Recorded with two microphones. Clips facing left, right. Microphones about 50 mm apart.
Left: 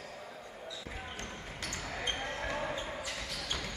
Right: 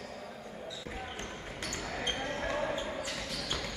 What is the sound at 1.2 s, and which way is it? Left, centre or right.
Basketball bounce, centre.